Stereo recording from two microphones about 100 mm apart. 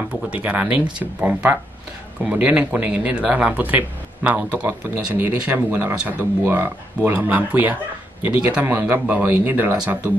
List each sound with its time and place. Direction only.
0.4 s speech: 15° right (ahead or behind)